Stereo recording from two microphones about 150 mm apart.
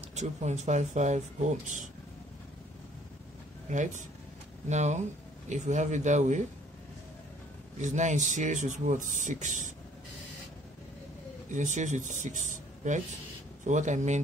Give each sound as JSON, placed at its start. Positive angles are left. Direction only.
{"t": 0.1, "sound": "speech", "side_deg": -50}
{"t": 3.7, "sound": "speech", "side_deg": -55}
{"t": 7.8, "sound": "speech", "side_deg": -55}
{"t": 11.5, "sound": "speech", "side_deg": -55}